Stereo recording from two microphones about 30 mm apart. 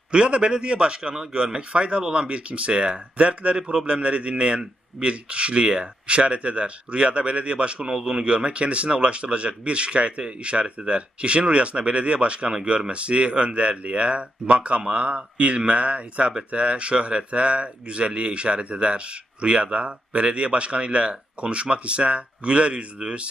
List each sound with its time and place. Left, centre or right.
0.1 s speech: right
7.8 s a man's voice: centre
8.3 s speech: right